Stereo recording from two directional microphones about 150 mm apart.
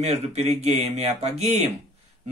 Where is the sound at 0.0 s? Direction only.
45° right (ahead or behind).